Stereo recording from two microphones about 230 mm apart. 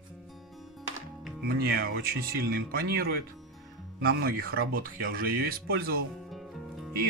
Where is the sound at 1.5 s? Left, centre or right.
Right.